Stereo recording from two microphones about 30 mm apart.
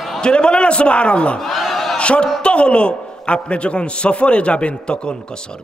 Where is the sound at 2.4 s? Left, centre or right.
Left.